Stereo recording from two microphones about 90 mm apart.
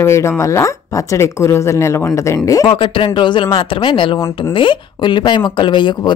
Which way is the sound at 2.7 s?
75° left (ahead or behind).